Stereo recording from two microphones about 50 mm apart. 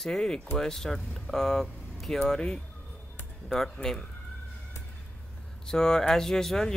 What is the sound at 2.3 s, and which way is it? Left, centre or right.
Speech, centre.